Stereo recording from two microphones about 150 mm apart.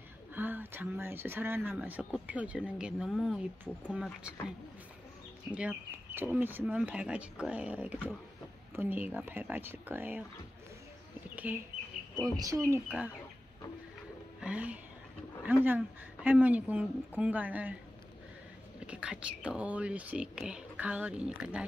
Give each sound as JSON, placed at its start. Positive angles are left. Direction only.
{"t": 0.3, "sound": "speech", "side_deg": -10}
{"t": 11.3, "sound": "speech", "side_deg": -10}
{"t": 12.2, "sound": "speech", "side_deg": -25}
{"t": 14.4, "sound": "speech", "side_deg": -10}
{"t": 18.8, "sound": "speech", "side_deg": -10}